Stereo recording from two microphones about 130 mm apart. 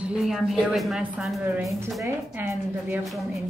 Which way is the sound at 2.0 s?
15° right (ahead or behind).